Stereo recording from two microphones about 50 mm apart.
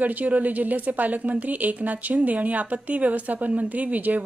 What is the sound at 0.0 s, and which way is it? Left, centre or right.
Speech, right.